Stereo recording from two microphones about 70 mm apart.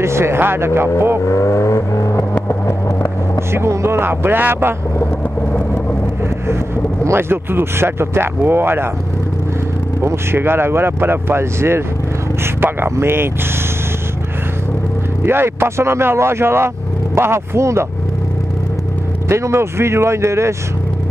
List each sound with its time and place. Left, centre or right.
0.0 s speech: right
1.2 s vehicle: left
3.5 s speech: right
7.1 s speech: right
10.0 s speech: right
15.2 s speech: right
19.2 s speech: right